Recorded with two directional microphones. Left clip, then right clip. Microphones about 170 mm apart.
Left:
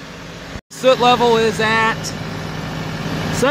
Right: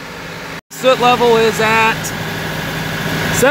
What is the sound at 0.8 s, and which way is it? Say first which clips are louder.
Speech: right 1 dB; 15° left (ahead or behind).